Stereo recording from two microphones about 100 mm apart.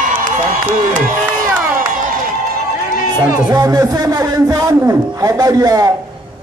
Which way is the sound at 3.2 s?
35° right (ahead or behind).